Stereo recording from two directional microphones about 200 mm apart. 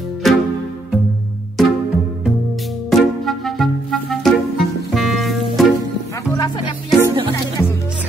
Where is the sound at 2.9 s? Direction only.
Centre (ahead or behind).